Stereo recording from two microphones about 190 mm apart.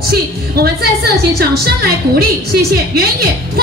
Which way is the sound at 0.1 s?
55° right (ahead or behind).